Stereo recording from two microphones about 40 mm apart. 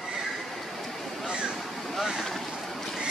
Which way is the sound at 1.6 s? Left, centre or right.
Centre.